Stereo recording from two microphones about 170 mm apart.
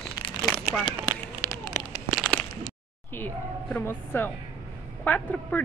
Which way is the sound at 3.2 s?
10° left (ahead or behind).